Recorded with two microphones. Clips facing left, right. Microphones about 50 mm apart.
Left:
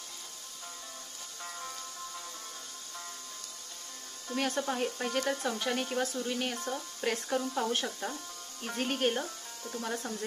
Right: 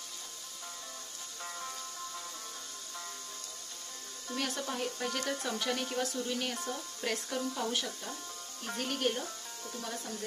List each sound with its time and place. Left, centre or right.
1.4 s music: centre
4.4 s speech: centre
7.5 s speech: left